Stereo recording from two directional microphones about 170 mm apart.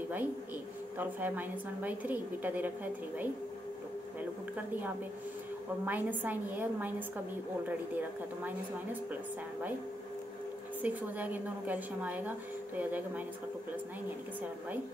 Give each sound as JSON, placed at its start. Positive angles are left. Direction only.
{"t": 0.9, "sound": "a woman's voice", "side_deg": -10}
{"t": 10.8, "sound": "a woman's voice", "side_deg": -10}